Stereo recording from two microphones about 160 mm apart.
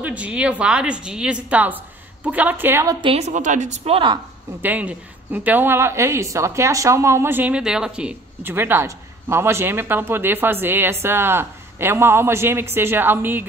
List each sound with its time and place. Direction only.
0.0 s a woman's voice: 10° right (ahead or behind)
3.0 s a woman's voice: 40° right (ahead or behind)
4.6 s a woman's voice: 10° right (ahead or behind)